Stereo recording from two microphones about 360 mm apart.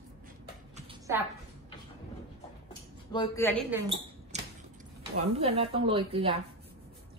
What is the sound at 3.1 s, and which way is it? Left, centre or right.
Speech, centre.